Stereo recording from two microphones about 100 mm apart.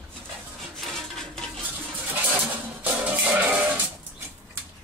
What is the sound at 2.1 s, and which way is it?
Music, 20° right (ahead or behind).